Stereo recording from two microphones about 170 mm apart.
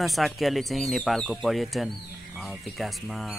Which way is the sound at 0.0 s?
Centre (ahead or behind).